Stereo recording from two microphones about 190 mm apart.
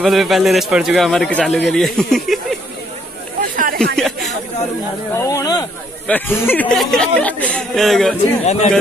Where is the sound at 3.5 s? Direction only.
45° right (ahead or behind).